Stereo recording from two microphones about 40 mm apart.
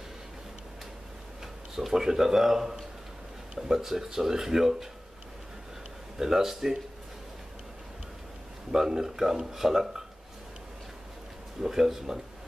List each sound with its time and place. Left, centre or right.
1.8 s speech: centre
6.1 s speech: centre
8.7 s speech: centre
11.6 s speech: centre